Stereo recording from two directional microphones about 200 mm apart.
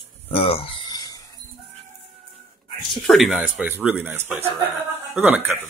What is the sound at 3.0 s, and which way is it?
Speech, centre (ahead or behind).